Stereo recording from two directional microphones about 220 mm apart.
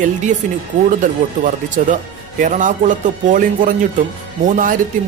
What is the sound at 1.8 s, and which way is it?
Speech, 35° right (ahead or behind).